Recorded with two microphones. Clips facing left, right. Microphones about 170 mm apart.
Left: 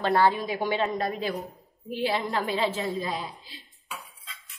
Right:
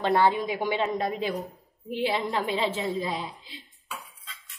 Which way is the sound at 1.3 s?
Centre (ahead or behind).